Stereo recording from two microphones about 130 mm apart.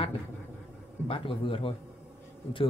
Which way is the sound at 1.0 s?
45° left (ahead or behind).